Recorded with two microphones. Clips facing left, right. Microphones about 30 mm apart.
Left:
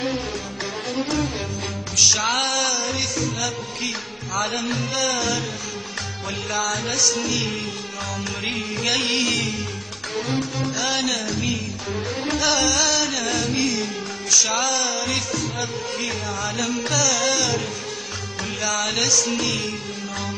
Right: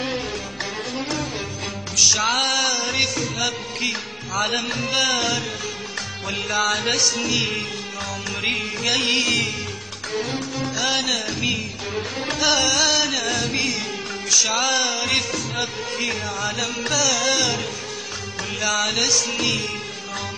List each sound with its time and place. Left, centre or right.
0.9 s music: centre
4.9 s music: right
6.2 s music: centre
6.7 s music: right
7.2 s music: centre
8.5 s music: centre
12.3 s music: centre
14.7 s music: right
16.0 s music: centre